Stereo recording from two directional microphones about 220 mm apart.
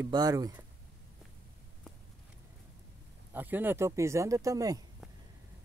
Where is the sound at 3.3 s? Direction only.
10° right (ahead or behind).